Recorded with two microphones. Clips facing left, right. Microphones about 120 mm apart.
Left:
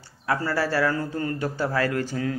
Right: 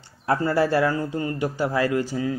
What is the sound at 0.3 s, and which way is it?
Speech, 25° right (ahead or behind).